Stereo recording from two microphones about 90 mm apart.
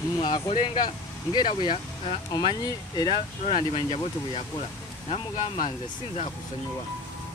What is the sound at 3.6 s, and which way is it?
Speech, 80° left.